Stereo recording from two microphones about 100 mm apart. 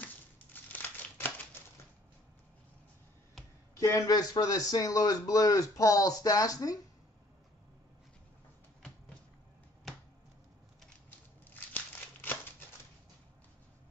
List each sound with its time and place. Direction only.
0.0 s crumpling: 20° left (ahead or behind)
3.8 s speech: 35° left (ahead or behind)
11.1 s a sound: 20° left (ahead or behind)